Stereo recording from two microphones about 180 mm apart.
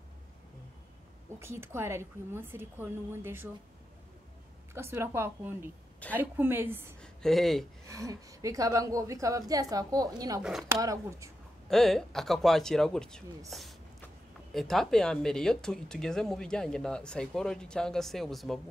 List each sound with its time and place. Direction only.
1.4 s a woman's voice: 15° right (ahead or behind)
4.7 s a woman's voice: 15° right (ahead or behind)
7.0 s speech: 5° left (ahead or behind)
7.8 s a woman's voice: 20° right (ahead or behind)
11.7 s speech: centre (ahead or behind)